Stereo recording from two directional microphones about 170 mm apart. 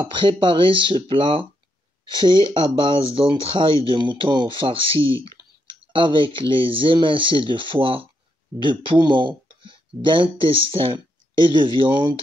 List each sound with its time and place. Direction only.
0.0 s speech: 30° right (ahead or behind)